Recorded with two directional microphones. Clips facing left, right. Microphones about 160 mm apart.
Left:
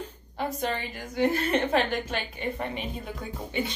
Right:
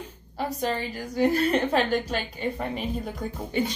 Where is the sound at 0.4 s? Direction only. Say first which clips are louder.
Right 2 dB; 40° right (ahead or behind).